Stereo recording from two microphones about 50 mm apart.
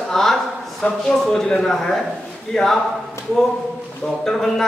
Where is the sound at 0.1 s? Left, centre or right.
Centre.